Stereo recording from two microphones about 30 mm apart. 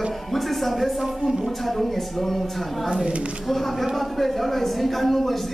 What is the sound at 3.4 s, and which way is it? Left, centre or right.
Speech, centre.